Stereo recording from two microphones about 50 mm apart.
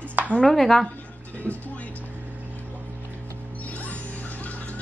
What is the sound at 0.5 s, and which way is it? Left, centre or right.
Speech, centre.